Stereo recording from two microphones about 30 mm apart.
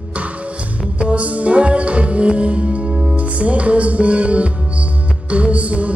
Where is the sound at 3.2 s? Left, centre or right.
Right.